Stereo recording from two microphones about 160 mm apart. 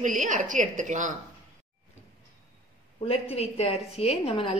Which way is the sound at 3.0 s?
40° left (ahead or behind).